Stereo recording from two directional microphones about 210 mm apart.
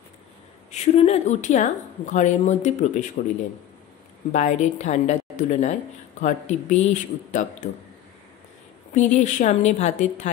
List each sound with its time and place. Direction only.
0.7 s a woman's voice: 30° left (ahead or behind)
4.3 s a woman's voice: 35° left (ahead or behind)
8.9 s a woman's voice: 35° left (ahead or behind)